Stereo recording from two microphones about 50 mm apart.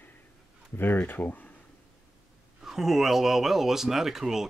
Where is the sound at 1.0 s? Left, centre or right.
Left.